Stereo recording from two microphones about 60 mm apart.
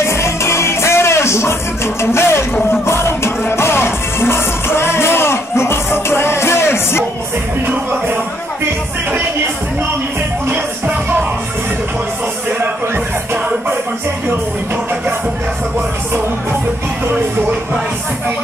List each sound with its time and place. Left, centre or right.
0.0 s music: left
10.5 s music: right
12.9 s music: right